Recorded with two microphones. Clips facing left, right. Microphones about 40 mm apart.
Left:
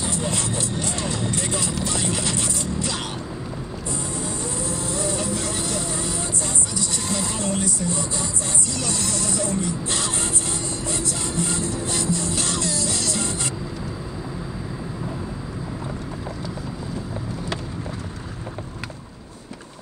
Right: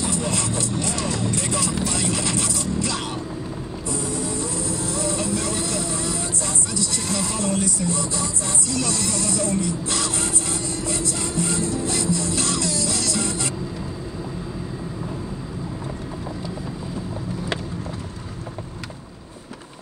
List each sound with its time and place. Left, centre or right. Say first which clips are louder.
0.0 s vehicle: right 1 dB; left
2.0 s music: right 1 dB; left
3.9 s vehicle: right 3 dB; left
7.1 s music: right 1 dB; left
9.2 s speech: right 2 dB; left
9.6 s music: right 1 dB; left